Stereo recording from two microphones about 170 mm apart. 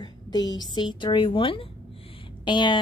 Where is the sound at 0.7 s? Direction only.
25° left (ahead or behind).